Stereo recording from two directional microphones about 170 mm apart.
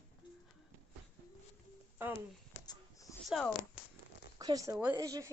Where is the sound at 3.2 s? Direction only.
Centre (ahead or behind).